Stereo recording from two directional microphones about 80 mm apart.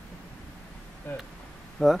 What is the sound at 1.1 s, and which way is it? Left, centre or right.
Speech, left.